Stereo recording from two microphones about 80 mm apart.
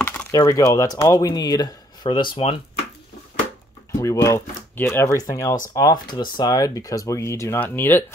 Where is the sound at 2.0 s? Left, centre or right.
Left.